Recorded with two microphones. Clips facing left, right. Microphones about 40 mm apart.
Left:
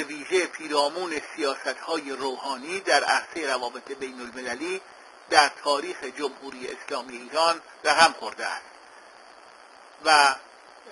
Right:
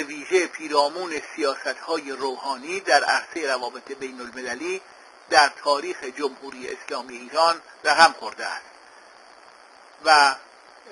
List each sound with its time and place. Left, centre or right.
0.0 s speech: centre
10.0 s speech: centre